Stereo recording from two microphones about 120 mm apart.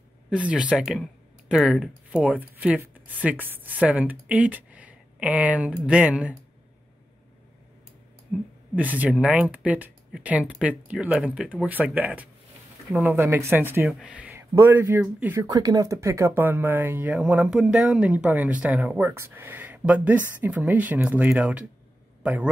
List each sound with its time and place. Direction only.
0.3 s speech: 10° right (ahead or behind)
8.3 s speech: centre (ahead or behind)
8.7 s speech: 10° right (ahead or behind)
15.4 s a man's voice: 30° right (ahead or behind); by 22.5 s 10° right (ahead or behind)